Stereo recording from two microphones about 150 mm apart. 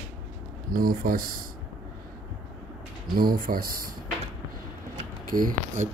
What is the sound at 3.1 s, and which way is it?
Speech, 75° right (ahead or behind).